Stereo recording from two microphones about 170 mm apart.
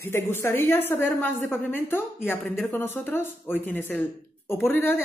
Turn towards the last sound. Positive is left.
turn(degrees=15)  # may be behind; listen again after turning